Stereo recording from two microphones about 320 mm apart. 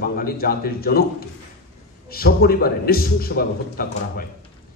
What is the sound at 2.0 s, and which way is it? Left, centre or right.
A man's voice, left.